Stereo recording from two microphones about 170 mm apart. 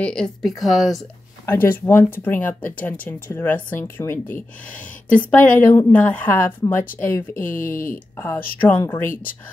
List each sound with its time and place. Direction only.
0.0 s speech: 5° left (ahead or behind)
0.9 s speech: 15° left (ahead or behind)
7.3 s speech: 50° left (ahead or behind)
8.2 s speech: 15° left (ahead or behind)
9.1 s speech: 55° left (ahead or behind)